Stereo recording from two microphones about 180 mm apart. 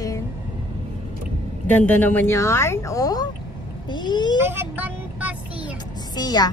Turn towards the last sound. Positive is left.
turn(degrees=20)  # may be behind; listen again after turning